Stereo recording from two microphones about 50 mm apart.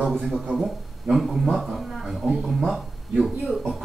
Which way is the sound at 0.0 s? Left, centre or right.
Centre.